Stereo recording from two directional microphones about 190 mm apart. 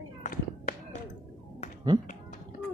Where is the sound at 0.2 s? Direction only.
45° left (ahead or behind).